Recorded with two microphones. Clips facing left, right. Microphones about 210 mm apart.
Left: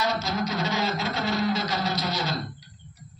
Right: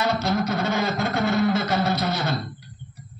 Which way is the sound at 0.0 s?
55° right (ahead or behind).